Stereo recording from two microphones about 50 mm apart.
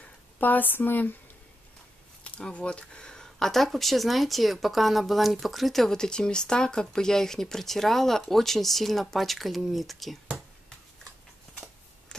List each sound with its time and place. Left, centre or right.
0.0 s speech: left
2.5 s speech: left; by 10.1 s centre
12.1 s a sound: centre